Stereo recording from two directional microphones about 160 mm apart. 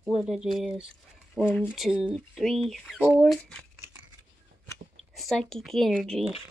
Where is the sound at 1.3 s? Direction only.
10° left (ahead or behind).